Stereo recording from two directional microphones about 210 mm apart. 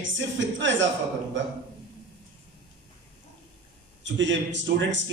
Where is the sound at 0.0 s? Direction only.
60° right (ahead or behind).